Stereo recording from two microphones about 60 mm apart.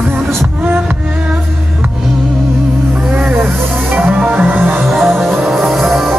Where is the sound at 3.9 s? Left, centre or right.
Right.